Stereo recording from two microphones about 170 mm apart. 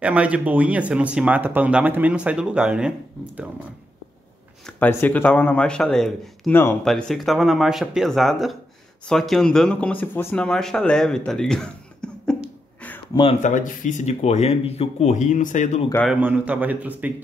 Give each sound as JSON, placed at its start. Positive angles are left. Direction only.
{"t": 0.0, "sound": "speech", "side_deg": -10}
{"t": 4.6, "sound": "speech", "side_deg": 10}
{"t": 6.9, "sound": "speech", "side_deg": 0}
{"t": 13.1, "sound": "speech", "side_deg": 30}
{"t": 13.4, "sound": "speech", "side_deg": 45}
{"t": 16.1, "sound": "speech", "side_deg": -10}